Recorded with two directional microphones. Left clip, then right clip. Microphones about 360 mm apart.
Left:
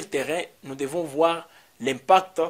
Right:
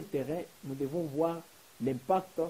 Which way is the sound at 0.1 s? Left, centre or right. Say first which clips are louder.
Left 9 dB; centre.